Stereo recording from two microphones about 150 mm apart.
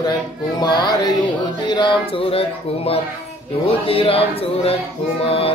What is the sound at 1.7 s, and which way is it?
Music, 30° left (ahead or behind).